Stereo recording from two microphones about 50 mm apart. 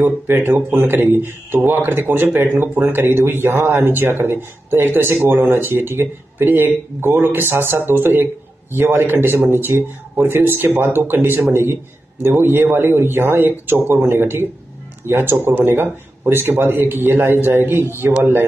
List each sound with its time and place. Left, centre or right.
0.0 s a man's voice: right